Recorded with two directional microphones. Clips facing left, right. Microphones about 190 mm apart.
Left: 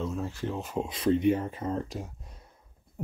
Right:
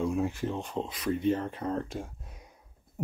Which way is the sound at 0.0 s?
15° right (ahead or behind).